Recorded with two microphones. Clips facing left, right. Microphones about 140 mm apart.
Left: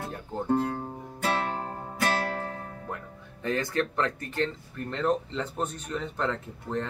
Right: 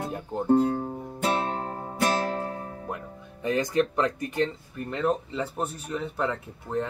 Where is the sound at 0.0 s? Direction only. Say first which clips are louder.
Right 3 dB; 15° right (ahead or behind).